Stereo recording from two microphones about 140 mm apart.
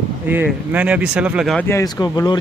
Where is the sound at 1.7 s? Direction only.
25° left (ahead or behind).